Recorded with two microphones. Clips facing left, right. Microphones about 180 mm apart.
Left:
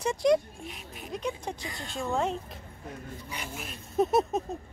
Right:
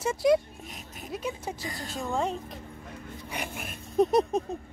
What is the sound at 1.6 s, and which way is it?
Speech, 40° right (ahead or behind).